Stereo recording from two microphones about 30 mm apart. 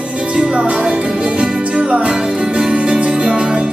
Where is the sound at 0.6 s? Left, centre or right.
Right.